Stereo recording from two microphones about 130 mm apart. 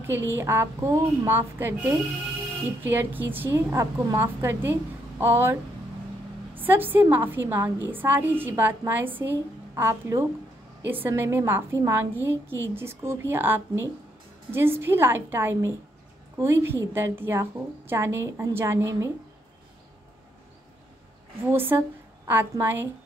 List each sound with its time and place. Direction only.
0.0 s a woman's voice: 15° right (ahead or behind)
21.5 s a woman's voice: 15° right (ahead or behind)